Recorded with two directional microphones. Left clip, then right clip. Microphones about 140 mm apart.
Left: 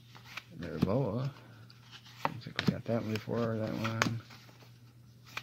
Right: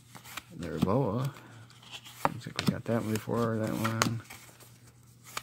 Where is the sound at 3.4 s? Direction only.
30° right (ahead or behind).